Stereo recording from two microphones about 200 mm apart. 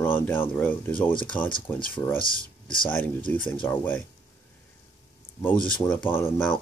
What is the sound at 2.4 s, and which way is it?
Speech, 5° left (ahead or behind).